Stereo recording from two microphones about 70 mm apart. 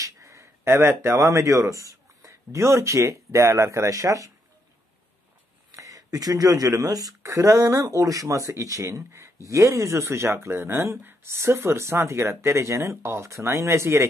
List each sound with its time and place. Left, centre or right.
0.0 s speech: right
5.7 s speech: right
7.3 s speech: right